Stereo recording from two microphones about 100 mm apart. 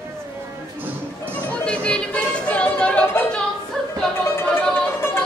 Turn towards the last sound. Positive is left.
turn(degrees=25)  # may be behind; listen again after turning